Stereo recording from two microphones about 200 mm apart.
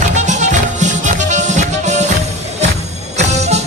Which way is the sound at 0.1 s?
35° right (ahead or behind).